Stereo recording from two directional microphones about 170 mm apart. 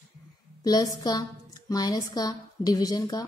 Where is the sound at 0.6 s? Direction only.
25° left (ahead or behind).